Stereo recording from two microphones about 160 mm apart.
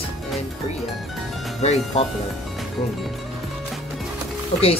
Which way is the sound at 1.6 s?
40° left (ahead or behind).